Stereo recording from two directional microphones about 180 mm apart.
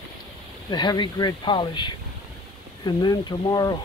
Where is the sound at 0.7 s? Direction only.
25° left (ahead or behind).